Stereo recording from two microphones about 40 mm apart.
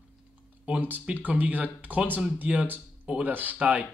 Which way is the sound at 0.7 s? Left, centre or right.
Right.